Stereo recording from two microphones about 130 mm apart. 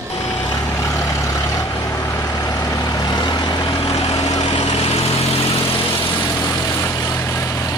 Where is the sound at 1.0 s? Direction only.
25° left (ahead or behind).